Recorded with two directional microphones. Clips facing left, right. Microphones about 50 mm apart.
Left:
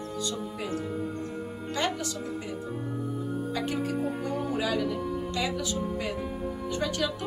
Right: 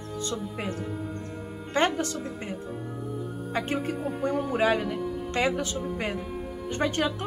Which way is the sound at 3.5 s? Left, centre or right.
Right.